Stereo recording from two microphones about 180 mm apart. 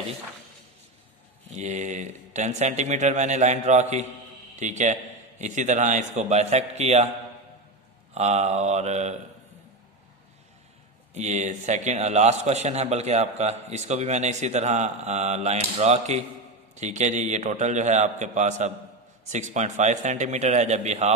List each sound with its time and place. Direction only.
1.5 s a man's voice: 40° right (ahead or behind)
8.1 s a man's voice: 40° right (ahead or behind)
11.1 s a man's voice: 40° right (ahead or behind)